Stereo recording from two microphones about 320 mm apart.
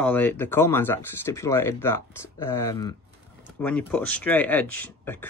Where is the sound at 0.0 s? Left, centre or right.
Centre.